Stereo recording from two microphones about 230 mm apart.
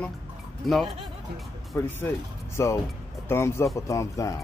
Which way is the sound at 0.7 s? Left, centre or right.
Centre.